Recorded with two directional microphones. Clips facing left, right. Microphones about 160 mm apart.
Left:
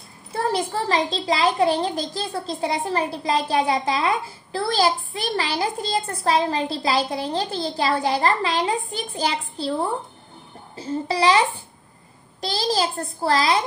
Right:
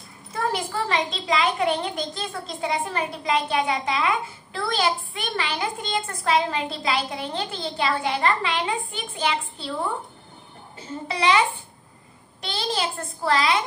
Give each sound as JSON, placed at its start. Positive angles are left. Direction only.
{"t": 0.3, "sound": "a child's voice", "side_deg": 35}